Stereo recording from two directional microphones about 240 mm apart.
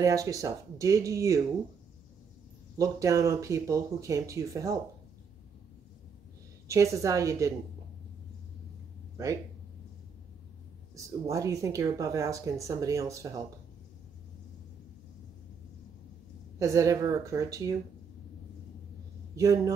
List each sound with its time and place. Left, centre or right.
0.0 s speech: centre
2.8 s speech: centre
6.7 s speech: centre
11.0 s speech: centre
16.5 s speech: centre
19.3 s a man's voice: centre